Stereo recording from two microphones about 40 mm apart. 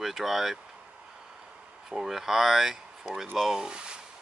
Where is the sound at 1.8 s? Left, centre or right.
Centre.